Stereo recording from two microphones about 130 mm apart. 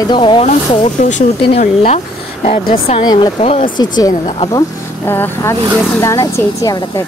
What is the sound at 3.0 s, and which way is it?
Speech, 35° left (ahead or behind).